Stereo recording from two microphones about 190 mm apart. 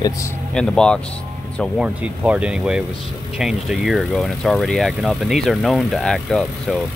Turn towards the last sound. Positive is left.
turn(degrees=0)  # may be behind; listen again after turning